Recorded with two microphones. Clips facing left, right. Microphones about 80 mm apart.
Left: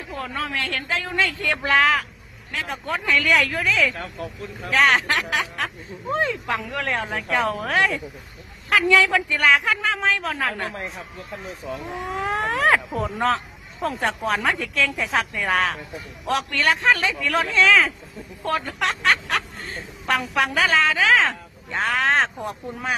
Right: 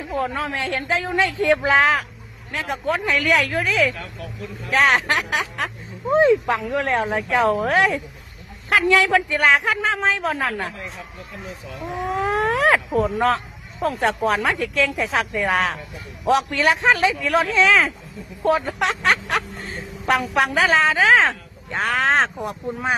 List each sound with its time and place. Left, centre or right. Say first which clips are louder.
0.2 s a woman's voice: right 2 dB; centre
3.9 s speech: left 2 dB; left
4.6 s a man's voice: right 1 dB; centre
6.6 s a man's voice: right 5 dB; centre
10.3 s speech: right 2 dB; centre
16.3 s a man's voice: right 4 dB; centre
19.3 s a sound: right 2 dB; centre
20.3 s a woman's voice: right 1 dB; centre